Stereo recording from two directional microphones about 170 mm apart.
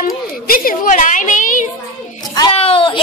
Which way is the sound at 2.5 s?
35° left (ahead or behind).